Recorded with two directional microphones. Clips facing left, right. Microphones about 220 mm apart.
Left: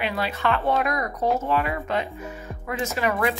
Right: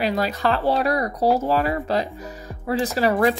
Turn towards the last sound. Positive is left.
turn(degrees=-35)  # may be behind; listen again after turning